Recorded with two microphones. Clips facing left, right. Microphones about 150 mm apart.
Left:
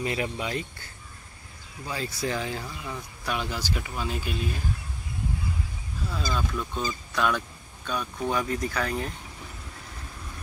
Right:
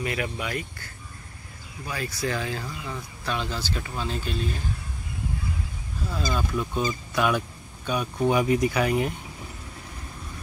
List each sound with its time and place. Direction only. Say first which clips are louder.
0.0 s speech: even; 25° left (ahead or behind)
1.9 s speech: right 1 dB; 25° left (ahead or behind)
6.1 s speech: right 3 dB; 5° right (ahead or behind)